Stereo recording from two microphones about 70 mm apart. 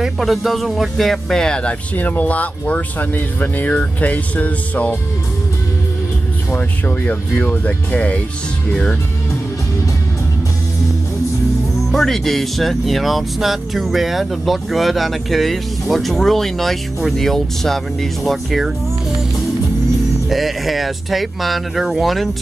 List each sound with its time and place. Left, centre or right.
0.0 s speech: centre; by 4.9 s left
6.5 s speech: left
11.9 s speech: centre
20.2 s speech: centre